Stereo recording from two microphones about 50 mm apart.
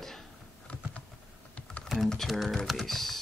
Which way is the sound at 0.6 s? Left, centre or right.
Left.